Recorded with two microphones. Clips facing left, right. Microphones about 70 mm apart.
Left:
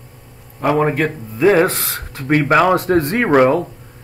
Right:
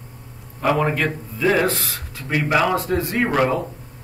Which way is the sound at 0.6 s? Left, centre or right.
Left.